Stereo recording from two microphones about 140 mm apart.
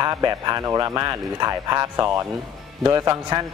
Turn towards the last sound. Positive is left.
turn(degrees=-25)  # may be behind; listen again after turning